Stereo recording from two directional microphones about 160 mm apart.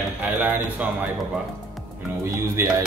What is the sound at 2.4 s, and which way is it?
Cutlery, 15° right (ahead or behind).